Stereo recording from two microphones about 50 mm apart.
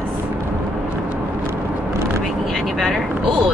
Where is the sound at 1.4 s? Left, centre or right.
Right.